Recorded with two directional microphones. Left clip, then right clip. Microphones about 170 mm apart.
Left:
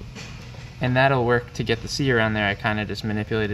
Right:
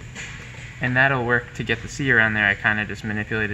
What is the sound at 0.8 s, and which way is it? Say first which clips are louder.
Speech: even; 35° left (ahead or behind).